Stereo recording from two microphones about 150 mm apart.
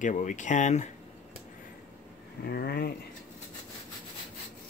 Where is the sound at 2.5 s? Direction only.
90° left.